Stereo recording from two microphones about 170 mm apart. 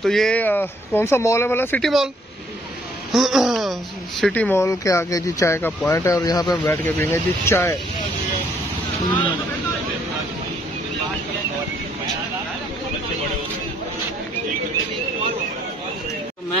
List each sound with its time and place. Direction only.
0.0 s speech: centre (ahead or behind)
3.1 s speech: centre (ahead or behind)
4.2 s speech: 10° left (ahead or behind)
6.6 s speech: 10° left (ahead or behind)